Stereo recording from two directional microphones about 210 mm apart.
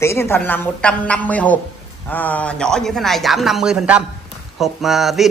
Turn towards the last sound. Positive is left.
turn(degrees=0)  # may be behind; listen again after turning